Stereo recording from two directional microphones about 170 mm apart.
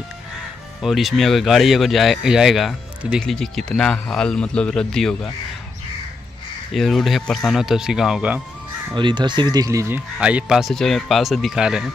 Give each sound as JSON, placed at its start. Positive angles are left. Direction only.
{"t": 0.8, "sound": "speech", "side_deg": 0}
{"t": 6.7, "sound": "speech", "side_deg": 0}
{"t": 8.9, "sound": "speech", "side_deg": -30}
{"t": 10.1, "sound": "speech", "side_deg": -5}